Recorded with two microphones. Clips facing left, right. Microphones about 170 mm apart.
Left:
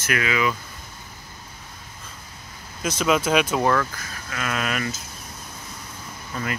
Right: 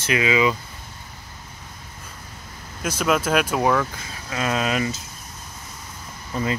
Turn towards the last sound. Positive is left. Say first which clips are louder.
# right 4 dB
turn(degrees=-30)  # may be behind; listen again after turning